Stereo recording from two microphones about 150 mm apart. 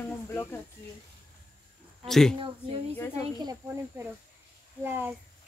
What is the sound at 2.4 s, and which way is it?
Speech, 40° right (ahead or behind).